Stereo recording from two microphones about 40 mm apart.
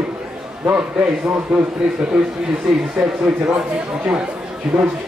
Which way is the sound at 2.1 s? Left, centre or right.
Centre.